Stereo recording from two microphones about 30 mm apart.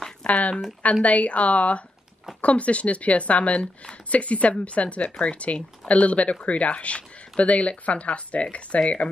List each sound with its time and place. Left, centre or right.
0.3 s speech: left